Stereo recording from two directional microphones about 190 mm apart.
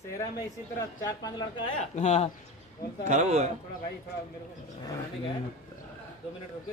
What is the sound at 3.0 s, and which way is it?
Speech, 40° right (ahead or behind).